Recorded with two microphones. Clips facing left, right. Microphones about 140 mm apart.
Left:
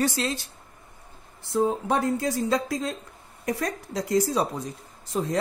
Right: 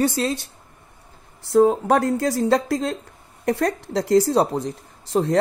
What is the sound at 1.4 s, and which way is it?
Speech, 85° right.